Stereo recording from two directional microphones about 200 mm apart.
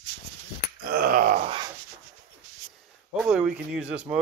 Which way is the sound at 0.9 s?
45° right (ahead or behind).